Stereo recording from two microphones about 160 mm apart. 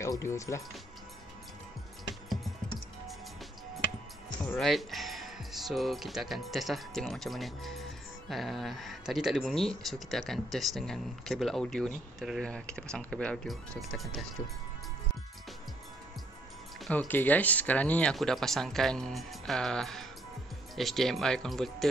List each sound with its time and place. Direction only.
0.0 s speech: 15° left (ahead or behind)
4.5 s speech: centre (ahead or behind)
16.8 s speech: centre (ahead or behind)
17.1 s speech: 10° left (ahead or behind)